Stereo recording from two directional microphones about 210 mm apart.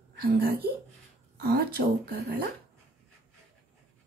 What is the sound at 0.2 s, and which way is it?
Speech, 45° right (ahead or behind).